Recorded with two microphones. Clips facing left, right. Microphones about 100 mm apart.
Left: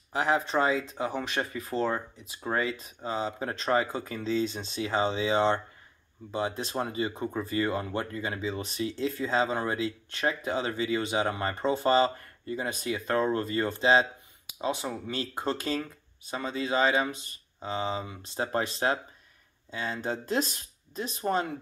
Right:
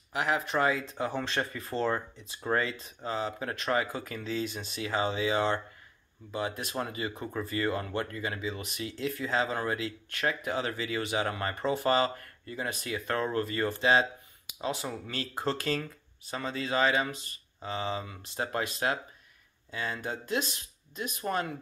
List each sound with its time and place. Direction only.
0.1 s speech: 30° left (ahead or behind)